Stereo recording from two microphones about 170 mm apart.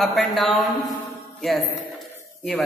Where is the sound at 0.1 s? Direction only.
Centre (ahead or behind).